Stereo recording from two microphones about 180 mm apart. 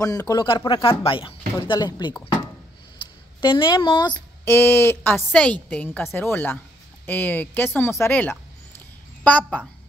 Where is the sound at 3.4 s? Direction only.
25° left (ahead or behind).